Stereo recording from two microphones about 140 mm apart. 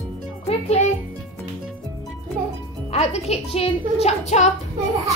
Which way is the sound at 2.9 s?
50° left (ahead or behind).